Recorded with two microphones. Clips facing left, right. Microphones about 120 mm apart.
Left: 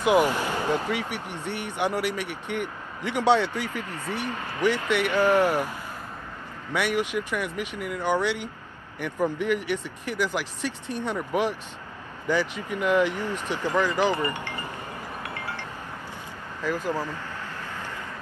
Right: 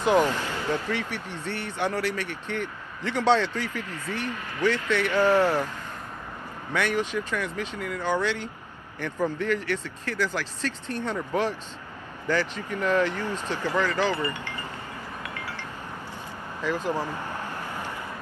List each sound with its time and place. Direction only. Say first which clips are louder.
0.0 s speech: left 1 dB; 15° left (ahead or behind)
6.7 s speech: left 1 dB; 15° left (ahead or behind)
16.7 s speech: right 1 dB; 15° right (ahead or behind)